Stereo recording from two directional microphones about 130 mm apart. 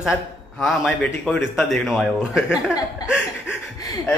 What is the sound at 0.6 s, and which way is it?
A man's voice, 5° left (ahead or behind).